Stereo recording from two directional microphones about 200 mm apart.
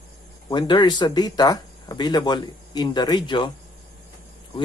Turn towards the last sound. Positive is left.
turn(degrees=25)  # may be behind; listen again after turning